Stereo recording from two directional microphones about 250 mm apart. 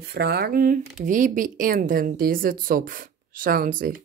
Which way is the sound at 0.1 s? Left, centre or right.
Right.